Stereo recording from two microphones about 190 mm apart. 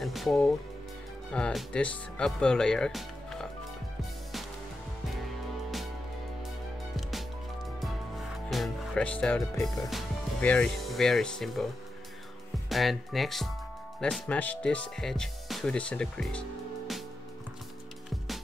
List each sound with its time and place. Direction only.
0.0 s speech: centre (ahead or behind)
8.5 s music: 5° left (ahead or behind)
9.7 s speech: centre (ahead or behind)